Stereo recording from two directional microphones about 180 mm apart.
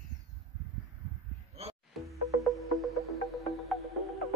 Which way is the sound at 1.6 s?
35° right (ahead or behind).